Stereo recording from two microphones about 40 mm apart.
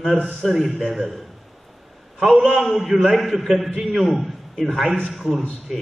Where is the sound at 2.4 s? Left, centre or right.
Centre.